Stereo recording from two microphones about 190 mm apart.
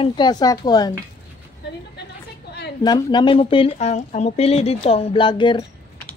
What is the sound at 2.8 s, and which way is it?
Speech, 20° left (ahead or behind).